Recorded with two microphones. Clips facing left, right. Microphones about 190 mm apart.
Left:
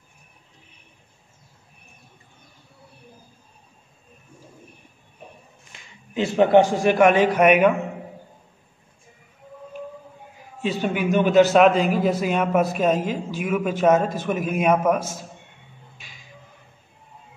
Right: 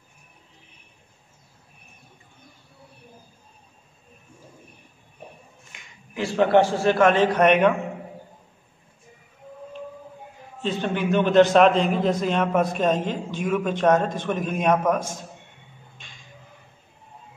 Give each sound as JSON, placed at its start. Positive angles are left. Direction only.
{"t": 5.7, "sound": "a sound", "side_deg": 30}
{"t": 6.1, "sound": "a man's voice", "side_deg": 20}
{"t": 10.6, "sound": "a man's voice", "side_deg": 10}